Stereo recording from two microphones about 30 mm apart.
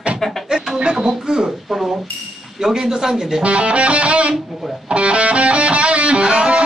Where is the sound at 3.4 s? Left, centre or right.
Right.